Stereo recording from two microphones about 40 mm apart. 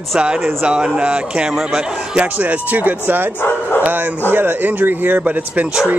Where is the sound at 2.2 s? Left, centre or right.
Right.